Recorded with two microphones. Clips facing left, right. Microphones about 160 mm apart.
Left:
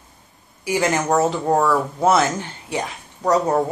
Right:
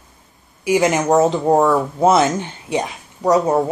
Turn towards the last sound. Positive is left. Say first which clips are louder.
# right 3 dB
turn(degrees=-10)  # may be behind; listen again after turning